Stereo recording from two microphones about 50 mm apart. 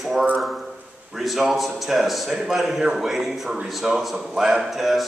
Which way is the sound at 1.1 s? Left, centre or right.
Centre.